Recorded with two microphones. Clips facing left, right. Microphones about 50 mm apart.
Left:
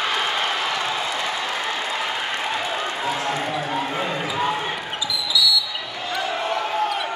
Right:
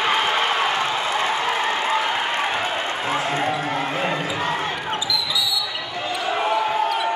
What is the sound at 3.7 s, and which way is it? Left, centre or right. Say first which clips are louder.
Basketball bounce: right 1 dB; right.